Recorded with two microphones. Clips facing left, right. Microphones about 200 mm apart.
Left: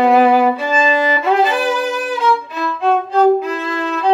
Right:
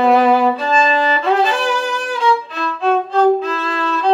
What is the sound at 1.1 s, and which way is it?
Violin, 15° left (ahead or behind).